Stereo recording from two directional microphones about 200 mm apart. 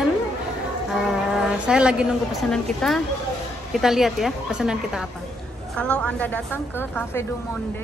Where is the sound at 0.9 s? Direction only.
Centre (ahead or behind).